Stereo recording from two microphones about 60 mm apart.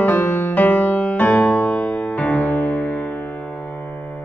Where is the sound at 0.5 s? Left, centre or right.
Left.